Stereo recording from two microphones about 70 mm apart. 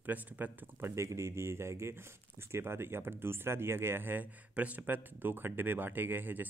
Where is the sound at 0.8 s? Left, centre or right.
Right.